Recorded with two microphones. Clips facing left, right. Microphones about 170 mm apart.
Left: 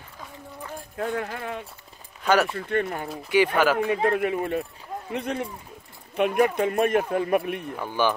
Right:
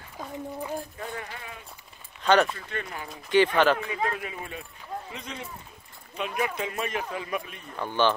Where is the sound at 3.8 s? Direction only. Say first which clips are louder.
Left 8 dB; 55° left (ahead or behind).